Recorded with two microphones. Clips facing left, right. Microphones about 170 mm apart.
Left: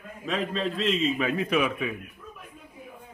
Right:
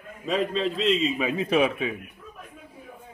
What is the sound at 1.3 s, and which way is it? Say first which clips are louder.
Speech: right 3 dB; 30° right (ahead or behind).